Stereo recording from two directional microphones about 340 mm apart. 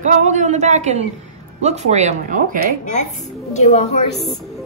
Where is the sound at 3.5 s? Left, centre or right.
Centre.